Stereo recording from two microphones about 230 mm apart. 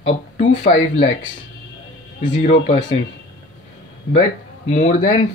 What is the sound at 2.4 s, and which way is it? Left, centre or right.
Speech, left.